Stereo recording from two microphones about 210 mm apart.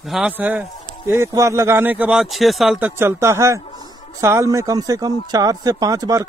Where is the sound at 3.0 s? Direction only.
10° right (ahead or behind).